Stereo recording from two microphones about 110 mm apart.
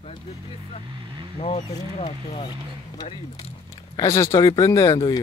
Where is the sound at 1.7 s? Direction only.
80° left.